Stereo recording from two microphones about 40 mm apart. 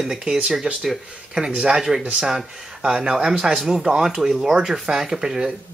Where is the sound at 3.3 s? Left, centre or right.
Centre.